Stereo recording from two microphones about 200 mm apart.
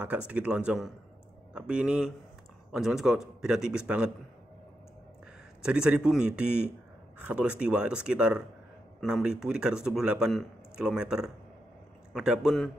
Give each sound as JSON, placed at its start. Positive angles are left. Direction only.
{"t": 0.3, "sound": "speech", "side_deg": -5}
{"t": 5.6, "sound": "speech", "side_deg": -5}